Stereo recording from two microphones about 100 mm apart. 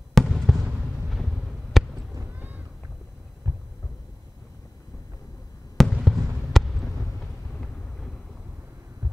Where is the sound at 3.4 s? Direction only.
40° right (ahead or behind).